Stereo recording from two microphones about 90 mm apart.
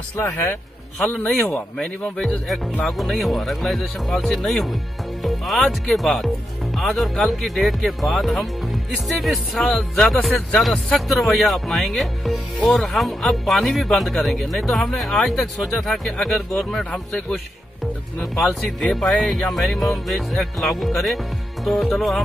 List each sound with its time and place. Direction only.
0.2 s speech: 30° left (ahead or behind)
1.2 s speech: 5° left (ahead or behind)